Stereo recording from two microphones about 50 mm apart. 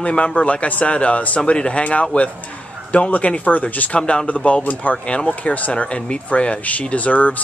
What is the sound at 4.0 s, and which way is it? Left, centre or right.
Speech, centre.